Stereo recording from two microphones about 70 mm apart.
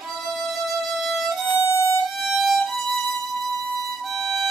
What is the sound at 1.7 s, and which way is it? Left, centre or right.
Violin, left.